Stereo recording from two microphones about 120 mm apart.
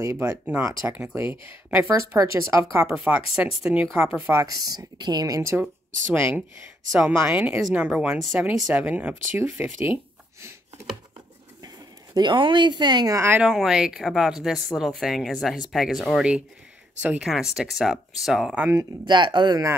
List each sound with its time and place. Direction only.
0.0 s a woman's voice: 25° right (ahead or behind)
2.9 s speech: 10° right (ahead or behind)
4.3 s speech: 25° right (ahead or behind)
6.9 s speech: 5° right (ahead or behind)
11.6 s speech: 35° right (ahead or behind)
13.5 s speech: centre (ahead or behind)
19.0 s speech: 40° right (ahead or behind)